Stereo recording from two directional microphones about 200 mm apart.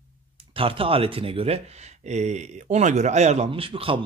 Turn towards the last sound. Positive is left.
turn(degrees=-25)  # may be behind; listen again after turning